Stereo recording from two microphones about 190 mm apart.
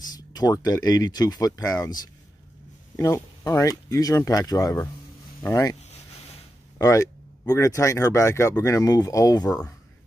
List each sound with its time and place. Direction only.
0.1 s speech: 20° left (ahead or behind)
6.8 s speech: 15° left (ahead or behind)
9.5 s speech: 5° left (ahead or behind)